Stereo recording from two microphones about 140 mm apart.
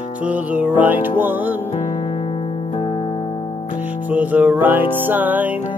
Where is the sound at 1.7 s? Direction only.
40° left (ahead or behind).